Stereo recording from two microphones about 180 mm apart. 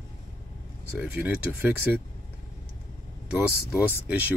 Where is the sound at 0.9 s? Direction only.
10° right (ahead or behind).